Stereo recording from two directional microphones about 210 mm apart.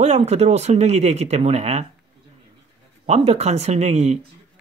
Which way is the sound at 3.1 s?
30° right (ahead or behind).